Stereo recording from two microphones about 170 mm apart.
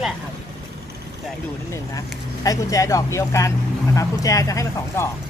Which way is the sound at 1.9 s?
20° left (ahead or behind).